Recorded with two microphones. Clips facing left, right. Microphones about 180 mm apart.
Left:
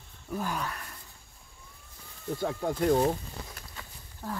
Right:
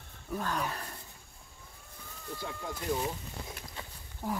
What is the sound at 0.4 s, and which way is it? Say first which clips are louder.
Speech: left 1 dB; 10° left (ahead or behind).